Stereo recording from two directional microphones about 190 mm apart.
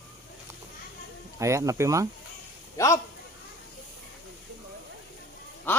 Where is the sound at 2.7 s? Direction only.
15° left (ahead or behind).